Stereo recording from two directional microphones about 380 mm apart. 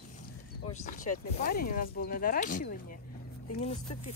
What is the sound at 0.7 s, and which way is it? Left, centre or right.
Speech, centre.